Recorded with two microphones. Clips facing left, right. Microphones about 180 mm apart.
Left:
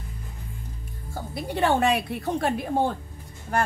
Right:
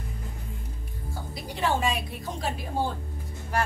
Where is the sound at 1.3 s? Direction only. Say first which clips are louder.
Left 5 dB; 60° left (ahead or behind).